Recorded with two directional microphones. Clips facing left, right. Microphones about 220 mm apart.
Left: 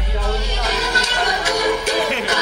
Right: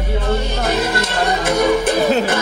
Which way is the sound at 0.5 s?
55° right (ahead or behind).